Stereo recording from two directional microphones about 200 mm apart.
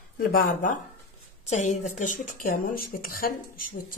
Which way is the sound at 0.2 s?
50° left (ahead or behind).